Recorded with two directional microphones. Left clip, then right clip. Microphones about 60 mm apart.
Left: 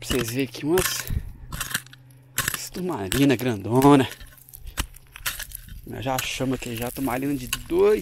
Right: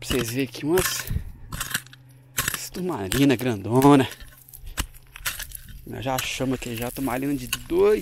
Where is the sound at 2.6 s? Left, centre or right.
Right.